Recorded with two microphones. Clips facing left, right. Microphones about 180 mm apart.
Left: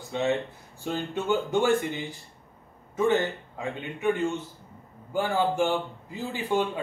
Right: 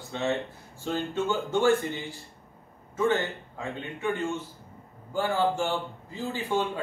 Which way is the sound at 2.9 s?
15° left (ahead or behind).